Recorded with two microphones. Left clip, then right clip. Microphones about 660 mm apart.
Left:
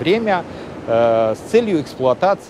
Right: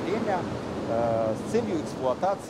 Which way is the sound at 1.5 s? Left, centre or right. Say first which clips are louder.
Left 14 dB; left.